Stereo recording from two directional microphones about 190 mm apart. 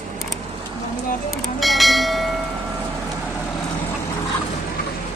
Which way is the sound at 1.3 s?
Centre (ahead or behind).